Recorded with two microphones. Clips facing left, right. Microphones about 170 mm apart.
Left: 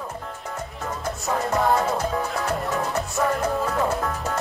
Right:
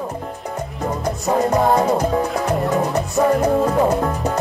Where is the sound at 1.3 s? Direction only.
20° right (ahead or behind).